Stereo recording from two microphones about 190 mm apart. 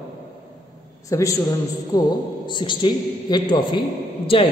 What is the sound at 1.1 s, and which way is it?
A man's voice, 20° left (ahead or behind).